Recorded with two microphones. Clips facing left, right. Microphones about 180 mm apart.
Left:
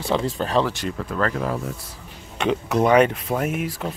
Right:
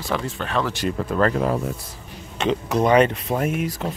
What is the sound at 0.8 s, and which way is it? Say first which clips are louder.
Speech: right 4 dB; 30° right (ahead or behind).